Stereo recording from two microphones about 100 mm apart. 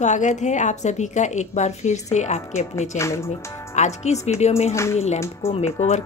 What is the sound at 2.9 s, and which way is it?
Speech, 30° left (ahead or behind).